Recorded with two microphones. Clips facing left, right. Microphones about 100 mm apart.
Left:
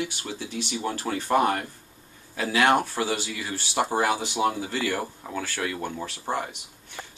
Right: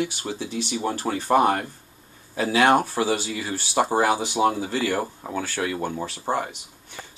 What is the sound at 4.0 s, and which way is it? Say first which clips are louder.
Speech: right 3 dB; 10° right (ahead or behind).